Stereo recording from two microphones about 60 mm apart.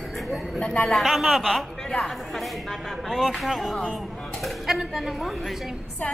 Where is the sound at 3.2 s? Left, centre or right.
Centre.